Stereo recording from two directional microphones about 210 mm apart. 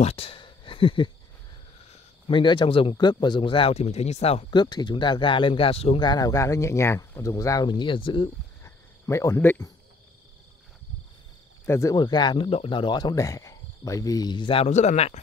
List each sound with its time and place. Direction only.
0.0 s a sound: 30° left (ahead or behind)
2.2 s speech: 25° left (ahead or behind)
11.6 s speech: 15° left (ahead or behind); by 15.1 s 30° left (ahead or behind)